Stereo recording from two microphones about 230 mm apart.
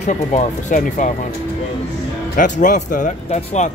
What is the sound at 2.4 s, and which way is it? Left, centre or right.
Speech, left.